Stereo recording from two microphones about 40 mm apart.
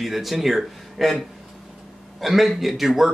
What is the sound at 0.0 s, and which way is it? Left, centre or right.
Speech, centre.